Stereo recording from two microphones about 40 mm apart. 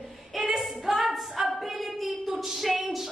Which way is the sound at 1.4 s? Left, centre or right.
Right.